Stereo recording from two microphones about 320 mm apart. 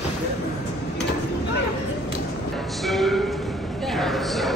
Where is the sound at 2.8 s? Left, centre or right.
Centre.